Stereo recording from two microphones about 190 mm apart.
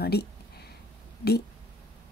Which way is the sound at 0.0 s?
55° left (ahead or behind).